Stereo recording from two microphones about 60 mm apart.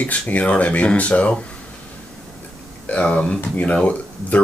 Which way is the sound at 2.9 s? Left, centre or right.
Left.